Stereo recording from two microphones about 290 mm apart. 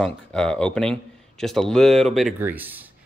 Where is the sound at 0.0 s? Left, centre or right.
Centre.